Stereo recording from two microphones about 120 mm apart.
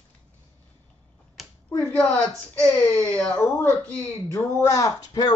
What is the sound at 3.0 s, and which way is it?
Speech, 10° left (ahead or behind).